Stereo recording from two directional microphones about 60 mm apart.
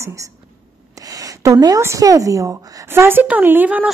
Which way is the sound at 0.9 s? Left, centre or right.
Right.